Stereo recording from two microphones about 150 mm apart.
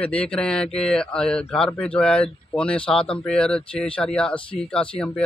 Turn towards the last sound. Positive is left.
turn(degrees=5)  # may be behind; listen again after turning